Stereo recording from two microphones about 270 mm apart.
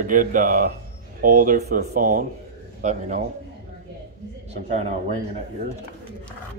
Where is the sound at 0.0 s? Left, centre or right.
Right.